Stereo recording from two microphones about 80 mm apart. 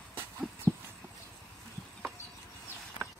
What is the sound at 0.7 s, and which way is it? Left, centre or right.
Horse, right.